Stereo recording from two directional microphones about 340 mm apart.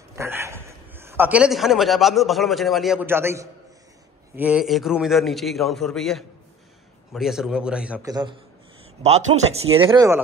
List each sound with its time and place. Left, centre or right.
0.1 s a man's voice: centre
9.5 s speech: centre